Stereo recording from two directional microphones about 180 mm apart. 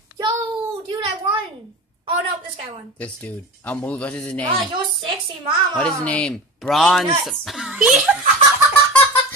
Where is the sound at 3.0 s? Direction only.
10° left (ahead or behind).